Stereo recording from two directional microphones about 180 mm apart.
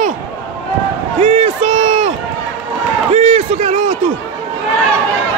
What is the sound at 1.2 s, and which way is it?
Run, 35° right (ahead or behind).